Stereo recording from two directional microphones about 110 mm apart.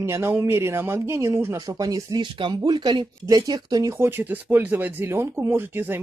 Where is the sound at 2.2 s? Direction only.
50° right (ahead or behind).